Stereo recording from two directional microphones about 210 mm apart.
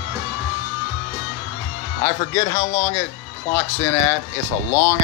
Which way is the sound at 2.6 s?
40° left (ahead or behind).